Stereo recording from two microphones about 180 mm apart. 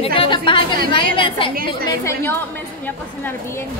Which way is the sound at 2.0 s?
10° left (ahead or behind).